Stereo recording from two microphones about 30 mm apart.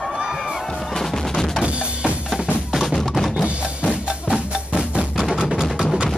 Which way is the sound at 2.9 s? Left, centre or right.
Centre.